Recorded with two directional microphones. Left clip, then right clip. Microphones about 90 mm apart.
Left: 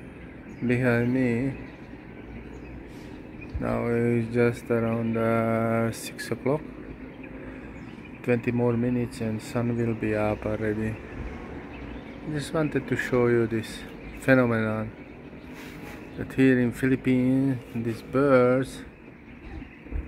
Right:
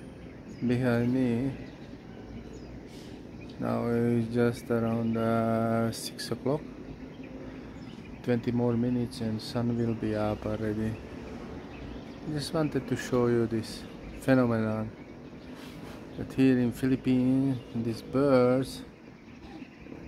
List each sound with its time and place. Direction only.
0.7 s speech: centre (ahead or behind)
3.6 s speech: 10° right (ahead or behind)
8.3 s speech: 10° right (ahead or behind)
12.4 s speech: 15° right (ahead or behind)
16.2 s speech: 5° right (ahead or behind)
18.1 s speech: 15° right (ahead or behind)